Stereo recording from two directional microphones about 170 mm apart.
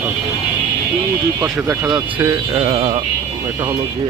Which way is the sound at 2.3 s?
30° right (ahead or behind).